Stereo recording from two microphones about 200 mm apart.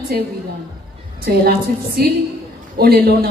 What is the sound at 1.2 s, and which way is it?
A woman's voice, 50° right (ahead or behind).